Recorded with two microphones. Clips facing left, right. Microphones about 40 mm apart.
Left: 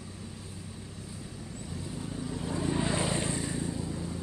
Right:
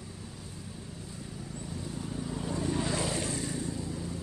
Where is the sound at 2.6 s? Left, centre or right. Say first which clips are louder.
Left 2 dB; left.